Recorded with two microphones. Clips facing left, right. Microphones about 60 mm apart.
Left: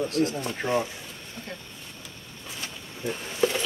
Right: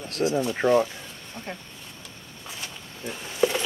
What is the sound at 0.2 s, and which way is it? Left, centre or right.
Speech, left.